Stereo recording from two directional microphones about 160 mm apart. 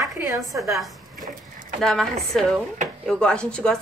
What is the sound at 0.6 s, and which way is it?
A woman's voice, centre (ahead or behind).